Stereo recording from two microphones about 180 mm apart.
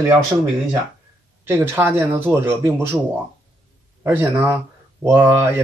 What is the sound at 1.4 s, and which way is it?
Speech, 10° right (ahead or behind).